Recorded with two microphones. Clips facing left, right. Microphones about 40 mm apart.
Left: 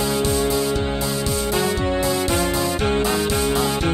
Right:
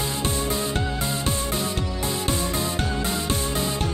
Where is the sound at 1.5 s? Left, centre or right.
Left.